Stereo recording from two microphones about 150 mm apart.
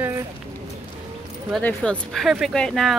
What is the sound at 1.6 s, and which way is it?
Speech, 5° left (ahead or behind).